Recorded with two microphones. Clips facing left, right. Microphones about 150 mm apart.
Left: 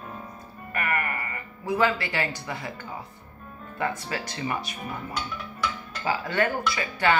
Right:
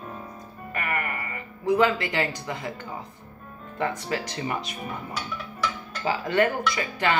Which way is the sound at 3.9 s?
20° right (ahead or behind).